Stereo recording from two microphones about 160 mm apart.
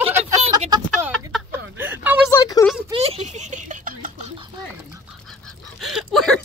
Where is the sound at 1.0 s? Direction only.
10° right (ahead or behind).